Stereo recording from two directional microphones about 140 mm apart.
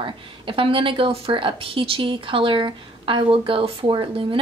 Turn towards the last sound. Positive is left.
turn(degrees=-40)  # may be behind; listen again after turning